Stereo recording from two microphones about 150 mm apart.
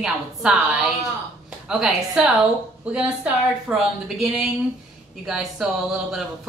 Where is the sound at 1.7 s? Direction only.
5° right (ahead or behind).